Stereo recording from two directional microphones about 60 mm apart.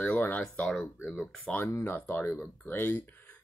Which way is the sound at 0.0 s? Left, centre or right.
Left.